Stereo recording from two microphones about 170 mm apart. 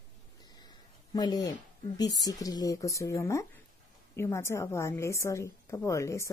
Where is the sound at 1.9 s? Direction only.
20° left (ahead or behind).